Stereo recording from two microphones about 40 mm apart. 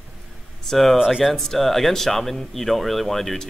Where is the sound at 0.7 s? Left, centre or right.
Centre.